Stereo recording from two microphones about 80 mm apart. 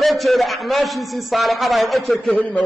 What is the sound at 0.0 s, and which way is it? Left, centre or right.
A man's voice, centre.